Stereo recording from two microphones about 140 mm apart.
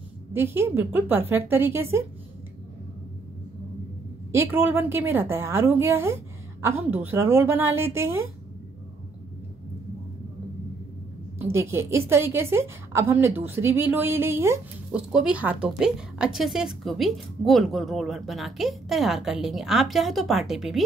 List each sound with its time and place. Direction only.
0.3 s a woman's voice: 15° right (ahead or behind)
4.3 s a woman's voice: 15° right (ahead or behind)
11.5 s a woman's voice: 20° right (ahead or behind)
14.9 s a woman's voice: 5° right (ahead or behind)